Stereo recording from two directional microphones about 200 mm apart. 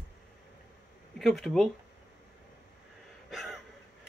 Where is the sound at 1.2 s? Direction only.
Centre (ahead or behind).